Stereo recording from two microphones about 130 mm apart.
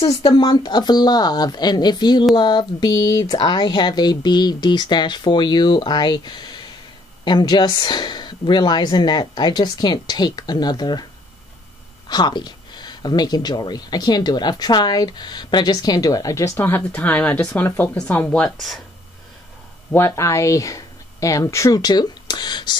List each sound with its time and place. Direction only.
0.0 s speech: 35° left (ahead or behind)
12.1 s speech: 35° left (ahead or behind); by 18.8 s 5° left (ahead or behind)
19.9 s speech: 20° left (ahead or behind); by 22.8 s 35° left (ahead or behind)